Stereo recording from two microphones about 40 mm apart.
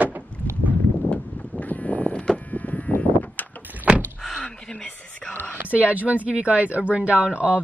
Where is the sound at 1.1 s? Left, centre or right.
Left.